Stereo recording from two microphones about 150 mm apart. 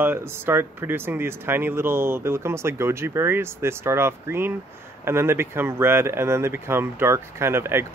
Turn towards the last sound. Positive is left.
turn(degrees=-15)  # may be behind; listen again after turning